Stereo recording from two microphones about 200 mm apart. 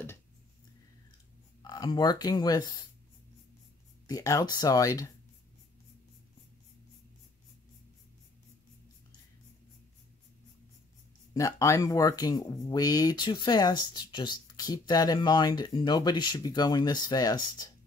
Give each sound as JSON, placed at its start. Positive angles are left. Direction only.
{"t": 1.6, "sound": "speech", "side_deg": 20}
{"t": 4.1, "sound": "speech", "side_deg": 15}
{"t": 11.3, "sound": "speech", "side_deg": 15}